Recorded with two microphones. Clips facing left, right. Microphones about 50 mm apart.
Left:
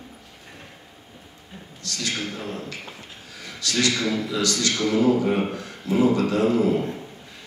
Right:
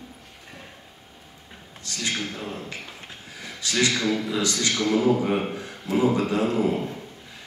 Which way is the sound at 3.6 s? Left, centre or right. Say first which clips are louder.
Even; right.